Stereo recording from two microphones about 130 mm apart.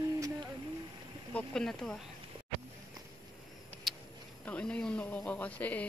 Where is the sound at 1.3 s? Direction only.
5° left (ahead or behind).